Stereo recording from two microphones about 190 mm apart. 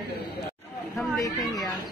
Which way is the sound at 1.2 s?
20° left (ahead or behind).